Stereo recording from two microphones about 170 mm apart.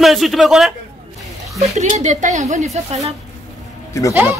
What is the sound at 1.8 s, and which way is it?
A woman's voice, 45° right (ahead or behind).